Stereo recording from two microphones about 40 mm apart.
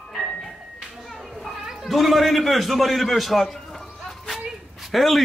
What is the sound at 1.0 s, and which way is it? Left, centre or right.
Children playing, centre.